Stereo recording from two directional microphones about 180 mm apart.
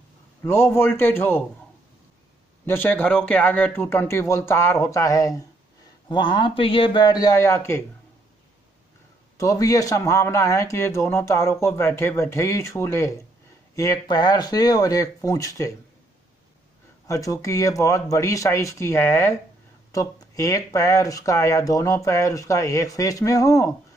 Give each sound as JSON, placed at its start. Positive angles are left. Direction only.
{"t": 0.4, "sound": "speech", "side_deg": 15}
{"t": 2.6, "sound": "speech", "side_deg": 10}
{"t": 9.4, "sound": "speech", "side_deg": 20}
{"t": 17.1, "sound": "speech", "side_deg": 20}